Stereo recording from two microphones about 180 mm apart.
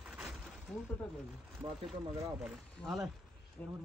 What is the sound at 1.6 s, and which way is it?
Speech, 30° right (ahead or behind).